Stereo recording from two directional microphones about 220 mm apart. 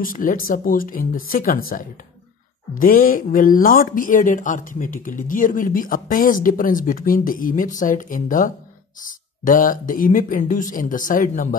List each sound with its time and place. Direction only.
0.0 s speech: 40° left (ahead or behind)